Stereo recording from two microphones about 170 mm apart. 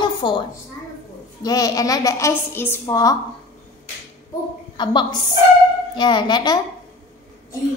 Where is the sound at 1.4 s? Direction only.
20° left (ahead or behind).